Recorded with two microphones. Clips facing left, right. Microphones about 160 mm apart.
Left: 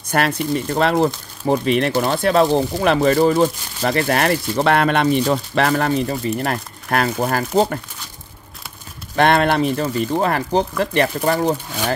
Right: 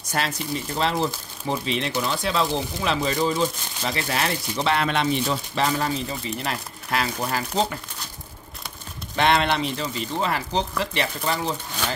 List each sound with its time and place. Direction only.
0.1 s speech: 60° left (ahead or behind)
9.1 s speech: 50° left (ahead or behind)